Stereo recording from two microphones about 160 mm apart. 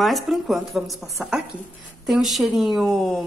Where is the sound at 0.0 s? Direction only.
Centre (ahead or behind).